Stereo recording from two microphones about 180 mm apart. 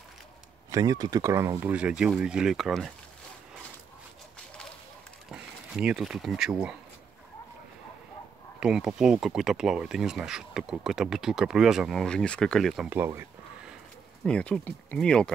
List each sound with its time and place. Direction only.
0.7 s speech: 20° right (ahead or behind); by 2.9 s centre (ahead or behind)
5.3 s speech: 5° right (ahead or behind)
8.5 s speech: 5° right (ahead or behind)
12.9 s speech: 10° right (ahead or behind)
14.2 s speech: 5° left (ahead or behind)